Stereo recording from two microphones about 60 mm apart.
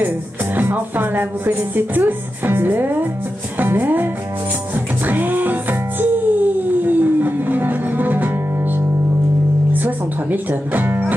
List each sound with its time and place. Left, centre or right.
0.6 s speech: right
3.5 s music: right